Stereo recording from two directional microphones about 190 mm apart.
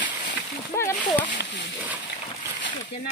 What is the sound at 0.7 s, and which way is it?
Speech, 15° left (ahead or behind).